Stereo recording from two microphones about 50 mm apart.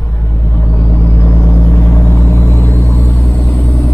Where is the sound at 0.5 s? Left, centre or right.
Left.